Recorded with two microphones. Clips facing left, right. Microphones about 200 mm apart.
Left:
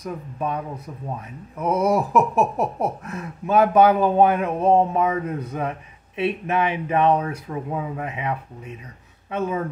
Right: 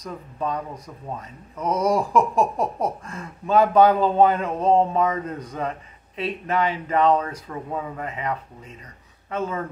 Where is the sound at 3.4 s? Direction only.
10° left (ahead or behind).